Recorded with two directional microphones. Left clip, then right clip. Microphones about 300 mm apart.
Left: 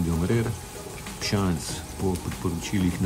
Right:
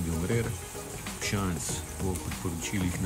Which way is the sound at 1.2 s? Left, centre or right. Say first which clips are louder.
Left 5 dB; centre.